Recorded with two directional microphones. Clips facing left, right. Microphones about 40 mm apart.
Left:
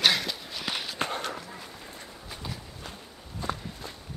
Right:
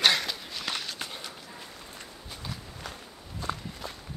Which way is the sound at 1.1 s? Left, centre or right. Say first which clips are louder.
Left 8 dB; left.